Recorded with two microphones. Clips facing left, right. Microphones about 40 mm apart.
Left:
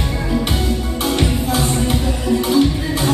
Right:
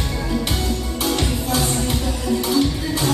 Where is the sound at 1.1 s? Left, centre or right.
Centre.